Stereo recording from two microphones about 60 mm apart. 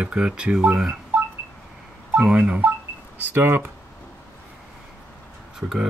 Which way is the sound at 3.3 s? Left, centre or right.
Right.